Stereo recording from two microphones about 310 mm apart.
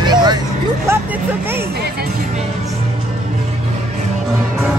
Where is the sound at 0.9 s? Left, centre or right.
Centre.